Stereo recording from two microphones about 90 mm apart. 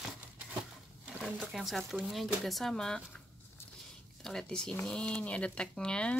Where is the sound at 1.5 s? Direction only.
5° right (ahead or behind).